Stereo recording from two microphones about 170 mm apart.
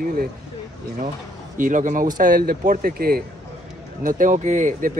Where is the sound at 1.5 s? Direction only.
50° right (ahead or behind).